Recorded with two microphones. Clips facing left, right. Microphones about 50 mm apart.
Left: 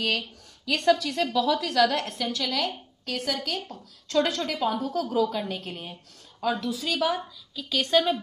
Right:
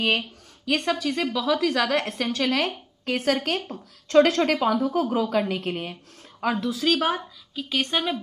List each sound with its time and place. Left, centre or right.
0.0 s a woman's voice: right
0.7 s a woman's voice: right
4.8 s a woman's voice: right
7.5 s a woman's voice: right